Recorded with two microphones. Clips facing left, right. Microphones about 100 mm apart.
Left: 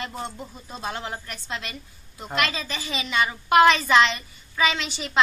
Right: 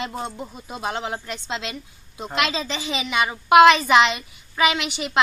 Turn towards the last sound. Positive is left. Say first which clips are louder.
# right 4 dB
turn(degrees=-15)  # may be behind; listen again after turning